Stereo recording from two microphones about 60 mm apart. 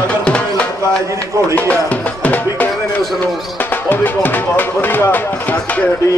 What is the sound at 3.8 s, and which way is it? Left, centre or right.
Speech, left.